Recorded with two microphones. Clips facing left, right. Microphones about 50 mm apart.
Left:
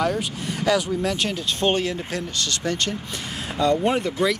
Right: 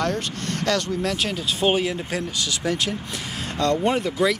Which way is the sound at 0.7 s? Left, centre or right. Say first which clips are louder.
Left 2 dB; centre.